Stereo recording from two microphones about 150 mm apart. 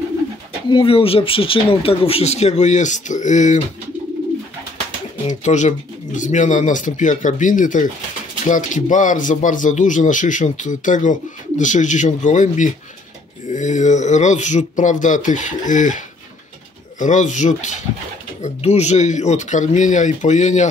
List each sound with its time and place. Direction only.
0.7 s speech: 35° left (ahead or behind); by 3.6 s 55° left (ahead or behind)
5.3 s speech: 55° left (ahead or behind)
17.0 s speech: 55° left (ahead or behind)